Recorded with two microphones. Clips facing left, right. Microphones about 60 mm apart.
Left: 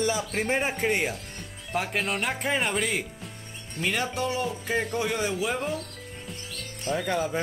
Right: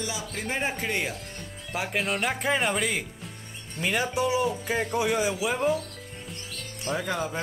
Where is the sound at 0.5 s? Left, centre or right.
Centre.